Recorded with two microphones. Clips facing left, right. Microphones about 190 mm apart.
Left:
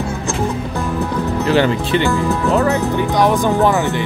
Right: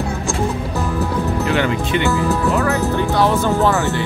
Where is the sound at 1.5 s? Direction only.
35° left (ahead or behind).